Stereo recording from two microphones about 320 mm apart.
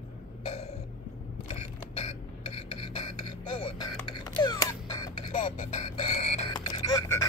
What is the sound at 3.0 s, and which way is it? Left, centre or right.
Music, left.